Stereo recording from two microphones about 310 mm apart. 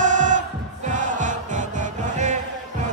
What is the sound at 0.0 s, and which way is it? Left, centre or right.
Music, right.